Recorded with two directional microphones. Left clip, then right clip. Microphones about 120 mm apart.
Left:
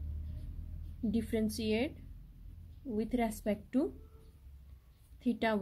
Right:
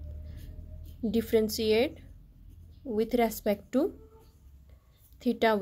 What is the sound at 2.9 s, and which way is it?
Speech, 45° right (ahead or behind).